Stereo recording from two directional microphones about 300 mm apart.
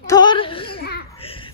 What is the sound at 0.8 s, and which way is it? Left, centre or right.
Babbling, left.